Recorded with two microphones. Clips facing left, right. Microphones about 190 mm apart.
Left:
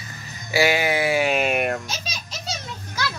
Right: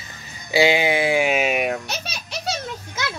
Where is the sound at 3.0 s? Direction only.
20° right (ahead or behind).